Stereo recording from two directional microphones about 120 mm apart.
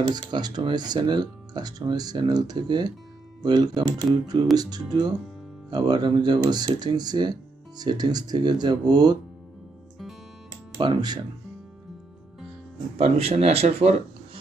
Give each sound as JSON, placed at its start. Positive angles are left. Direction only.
{"t": 0.1, "sound": "speech", "side_deg": -35}
{"t": 10.8, "sound": "speech", "side_deg": -40}
{"t": 12.9, "sound": "speech", "side_deg": -55}